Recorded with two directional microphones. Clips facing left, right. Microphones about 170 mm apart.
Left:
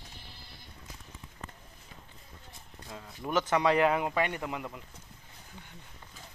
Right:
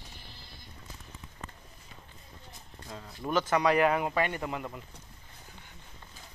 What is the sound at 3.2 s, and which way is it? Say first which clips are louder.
Speech: even; 20° left (ahead or behind).